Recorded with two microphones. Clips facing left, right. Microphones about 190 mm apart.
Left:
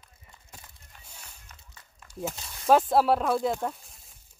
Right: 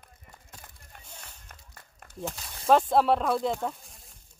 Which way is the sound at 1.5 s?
55° right (ahead or behind).